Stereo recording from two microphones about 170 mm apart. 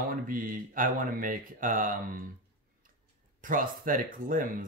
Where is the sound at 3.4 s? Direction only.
50° right (ahead or behind).